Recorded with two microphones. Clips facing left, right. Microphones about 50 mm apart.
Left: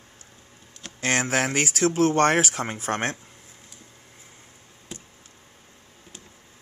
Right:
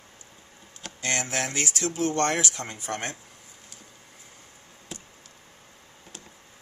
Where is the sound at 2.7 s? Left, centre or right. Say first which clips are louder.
Left 6 dB; left.